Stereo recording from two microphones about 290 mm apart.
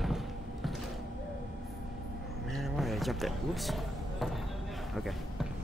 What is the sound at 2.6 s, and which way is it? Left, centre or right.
Basketball bounce, centre.